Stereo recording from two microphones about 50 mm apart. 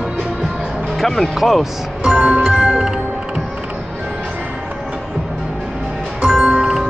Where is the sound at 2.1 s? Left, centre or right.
Centre.